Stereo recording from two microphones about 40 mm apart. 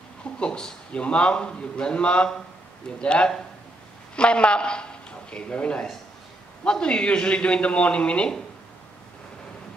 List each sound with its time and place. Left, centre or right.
0.2 s a man's voice: left